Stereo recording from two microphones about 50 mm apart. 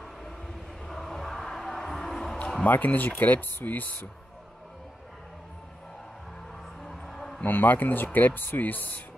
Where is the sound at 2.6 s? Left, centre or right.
Left.